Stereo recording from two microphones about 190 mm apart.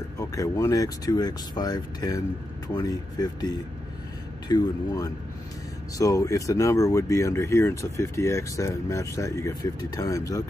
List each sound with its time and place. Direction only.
0.2 s speech: 15° left (ahead or behind)
4.5 s speech: 20° left (ahead or behind)